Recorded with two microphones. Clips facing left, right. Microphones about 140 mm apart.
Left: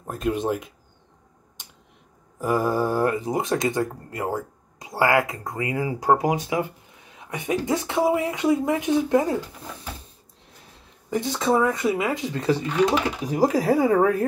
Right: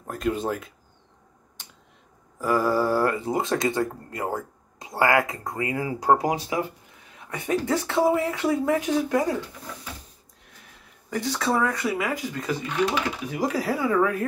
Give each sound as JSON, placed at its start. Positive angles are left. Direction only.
{"t": 0.0, "sound": "speech", "side_deg": 20}
{"t": 2.3, "sound": "speech", "side_deg": 20}
{"t": 5.7, "sound": "speech", "side_deg": 15}
{"t": 11.1, "sound": "speech", "side_deg": 20}